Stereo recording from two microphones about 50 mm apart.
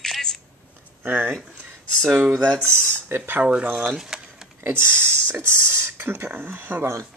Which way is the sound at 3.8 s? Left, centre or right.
Centre.